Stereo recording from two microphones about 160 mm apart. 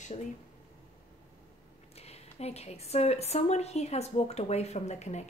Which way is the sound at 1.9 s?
40° left (ahead or behind).